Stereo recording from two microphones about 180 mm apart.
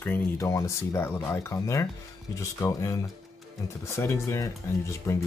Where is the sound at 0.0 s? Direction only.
15° left (ahead or behind).